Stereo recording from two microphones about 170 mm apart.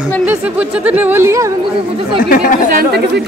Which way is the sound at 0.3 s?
10° right (ahead or behind).